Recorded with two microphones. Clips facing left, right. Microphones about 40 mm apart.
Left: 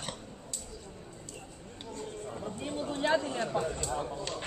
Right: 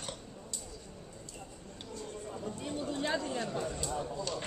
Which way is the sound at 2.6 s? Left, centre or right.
Left.